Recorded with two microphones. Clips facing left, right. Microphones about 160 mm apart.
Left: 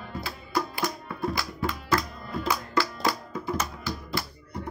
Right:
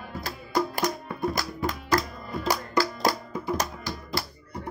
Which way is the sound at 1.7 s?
40° right (ahead or behind).